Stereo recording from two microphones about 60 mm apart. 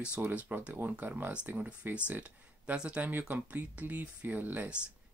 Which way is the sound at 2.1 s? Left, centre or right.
Right.